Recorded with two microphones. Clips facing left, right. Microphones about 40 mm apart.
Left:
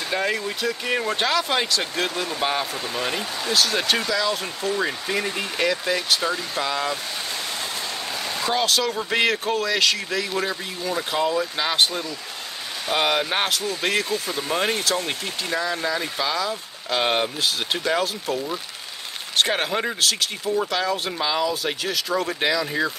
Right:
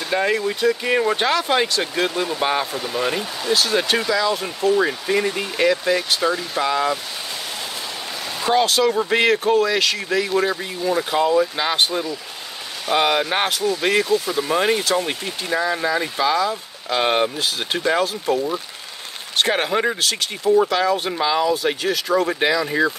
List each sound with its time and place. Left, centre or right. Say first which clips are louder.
0.1 s speech: right 5 dB; centre
3.5 s speech: right 2 dB; centre
6.2 s speech: right 4 dB; centre
8.5 s speech: right 7 dB; centre